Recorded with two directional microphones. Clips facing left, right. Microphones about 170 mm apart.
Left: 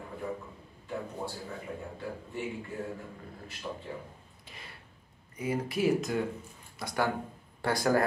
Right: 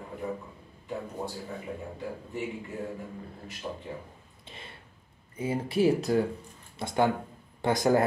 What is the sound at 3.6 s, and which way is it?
Speech, 30° right (ahead or behind).